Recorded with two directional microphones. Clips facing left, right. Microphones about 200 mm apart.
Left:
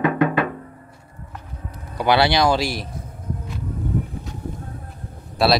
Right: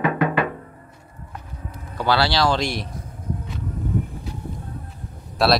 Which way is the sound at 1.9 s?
20° left (ahead or behind).